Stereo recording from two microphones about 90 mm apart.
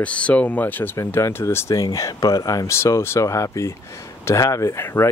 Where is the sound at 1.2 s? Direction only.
30° left (ahead or behind).